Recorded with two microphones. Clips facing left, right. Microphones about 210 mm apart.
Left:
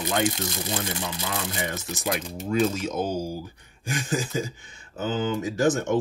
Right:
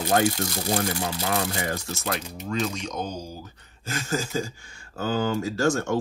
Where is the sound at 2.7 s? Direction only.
5° left (ahead or behind).